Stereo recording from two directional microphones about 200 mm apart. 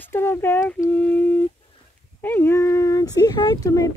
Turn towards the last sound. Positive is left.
turn(degrees=15)  # may be behind; listen again after turning